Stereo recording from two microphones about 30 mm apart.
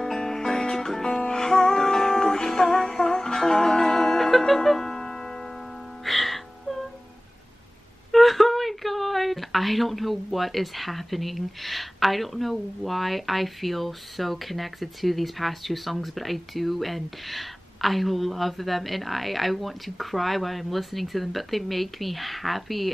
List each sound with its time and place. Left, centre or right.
0.0 s music: centre
5.0 s music: left
6.0 s music: centre
8.1 s speech: centre